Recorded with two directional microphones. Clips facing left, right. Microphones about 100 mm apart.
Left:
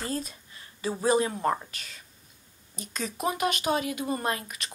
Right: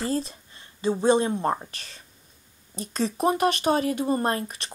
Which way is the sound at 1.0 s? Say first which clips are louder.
Right 2 dB; 30° right (ahead or behind).